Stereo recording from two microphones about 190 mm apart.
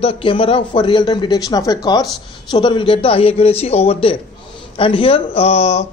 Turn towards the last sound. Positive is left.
turn(degrees=35)  # may be behind; listen again after turning